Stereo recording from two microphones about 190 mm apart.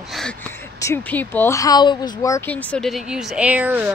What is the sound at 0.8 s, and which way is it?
Speech, 10° left (ahead or behind).